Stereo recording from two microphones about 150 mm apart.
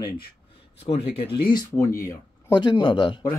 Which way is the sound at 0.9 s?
35° left (ahead or behind).